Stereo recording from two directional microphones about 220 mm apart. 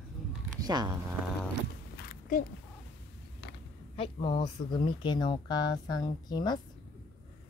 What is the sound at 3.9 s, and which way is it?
Speech, 25° left (ahead or behind).